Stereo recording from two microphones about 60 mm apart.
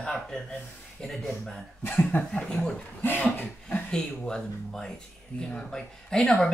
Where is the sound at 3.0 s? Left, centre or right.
Left.